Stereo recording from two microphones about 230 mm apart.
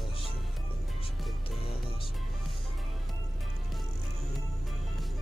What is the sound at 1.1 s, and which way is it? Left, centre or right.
Music, centre.